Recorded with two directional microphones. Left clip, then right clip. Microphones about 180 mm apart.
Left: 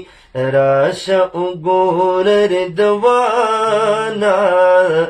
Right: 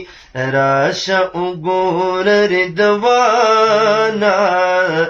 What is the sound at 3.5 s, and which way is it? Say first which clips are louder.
Music: right 3 dB; 60° left (ahead or behind).